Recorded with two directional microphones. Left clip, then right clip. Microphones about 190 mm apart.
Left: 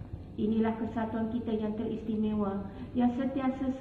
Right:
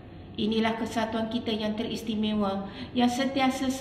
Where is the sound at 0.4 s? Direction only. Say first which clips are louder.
Right 4 dB; 15° right (ahead or behind).